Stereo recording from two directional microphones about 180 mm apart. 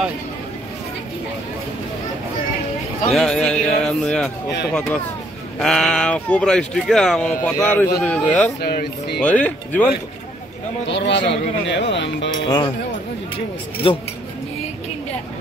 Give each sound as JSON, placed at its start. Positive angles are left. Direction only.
{"t": 3.2, "sound": "speech", "side_deg": 5}
{"t": 8.5, "sound": "speech", "side_deg": 60}
{"t": 9.2, "sound": "speech", "side_deg": 10}
{"t": 10.9, "sound": "speech", "side_deg": 75}
{"t": 12.4, "sound": "speech", "side_deg": 20}